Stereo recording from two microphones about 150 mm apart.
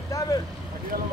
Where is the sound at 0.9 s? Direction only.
80° right.